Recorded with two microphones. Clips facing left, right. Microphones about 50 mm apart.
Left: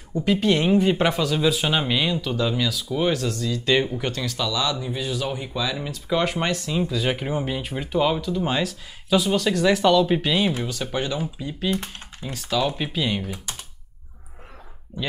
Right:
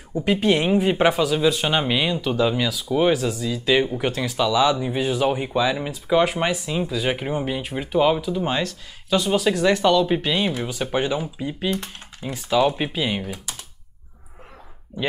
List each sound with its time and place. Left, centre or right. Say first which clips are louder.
0.1 s speech: right 1 dB; centre
6.1 s speech: right 4 dB; centre
10.6 s speech: right 3 dB; centre